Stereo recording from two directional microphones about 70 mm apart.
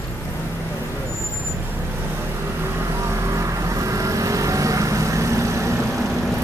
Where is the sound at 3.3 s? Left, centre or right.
Right.